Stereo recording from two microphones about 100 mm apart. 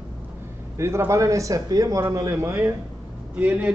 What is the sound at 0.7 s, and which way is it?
A man's voice, 25° right (ahead or behind).